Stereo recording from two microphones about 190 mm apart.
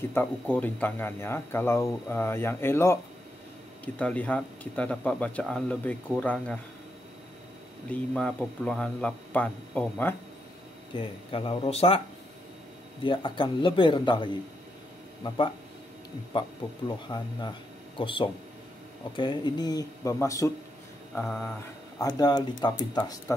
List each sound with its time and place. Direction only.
0.1 s speech: 10° left (ahead or behind)
7.9 s speech: 5° left (ahead or behind)
11.0 s speech: 30° left (ahead or behind)
13.0 s speech: 25° left (ahead or behind)